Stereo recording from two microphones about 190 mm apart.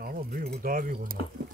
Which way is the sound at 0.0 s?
50° right (ahead or behind).